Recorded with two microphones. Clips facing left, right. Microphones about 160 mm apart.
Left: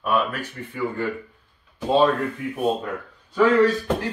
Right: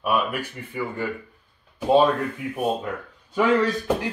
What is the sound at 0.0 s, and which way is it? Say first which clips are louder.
Speech: left 1 dB; 10° right (ahead or behind).